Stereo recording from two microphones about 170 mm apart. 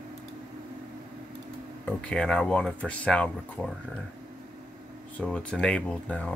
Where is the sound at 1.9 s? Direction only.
5° left (ahead or behind).